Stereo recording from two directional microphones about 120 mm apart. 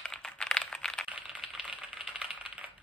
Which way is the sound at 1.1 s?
5° right (ahead or behind).